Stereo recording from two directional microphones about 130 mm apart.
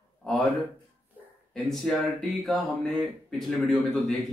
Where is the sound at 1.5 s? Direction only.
Centre (ahead or behind).